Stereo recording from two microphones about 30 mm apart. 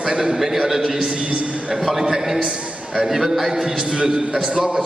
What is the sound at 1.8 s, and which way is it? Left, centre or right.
A man's voice, centre.